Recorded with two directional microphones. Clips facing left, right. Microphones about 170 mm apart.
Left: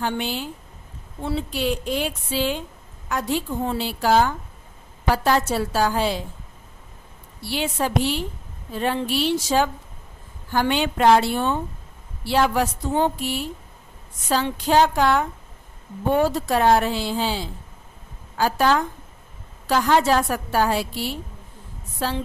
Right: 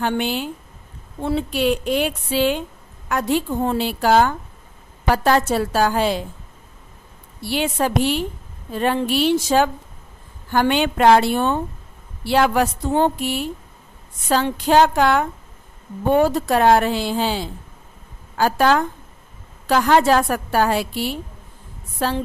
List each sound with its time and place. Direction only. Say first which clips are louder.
0.0 s a woman's voice: right 4 dB; 60° right (ahead or behind)
7.4 s a woman's voice: right 4 dB; 55° right (ahead or behind)